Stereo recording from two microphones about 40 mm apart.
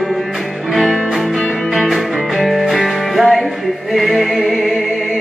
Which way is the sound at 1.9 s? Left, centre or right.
Centre.